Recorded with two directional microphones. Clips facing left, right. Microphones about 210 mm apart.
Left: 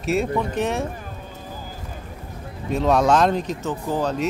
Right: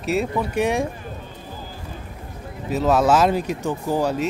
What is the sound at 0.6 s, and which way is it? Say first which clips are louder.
Speech: right 7 dB; 15° right (ahead or behind).